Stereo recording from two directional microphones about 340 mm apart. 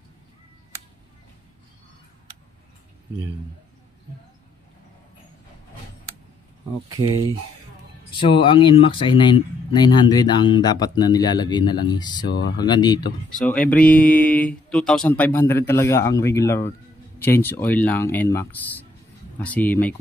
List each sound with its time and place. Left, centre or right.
8.1 s speech: centre
12.3 s speech: left
12.5 s speech: centre